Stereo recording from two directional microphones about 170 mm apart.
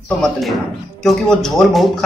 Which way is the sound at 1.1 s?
Centre (ahead or behind).